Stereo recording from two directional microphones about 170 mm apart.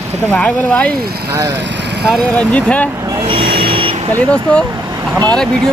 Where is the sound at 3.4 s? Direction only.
65° right (ahead or behind).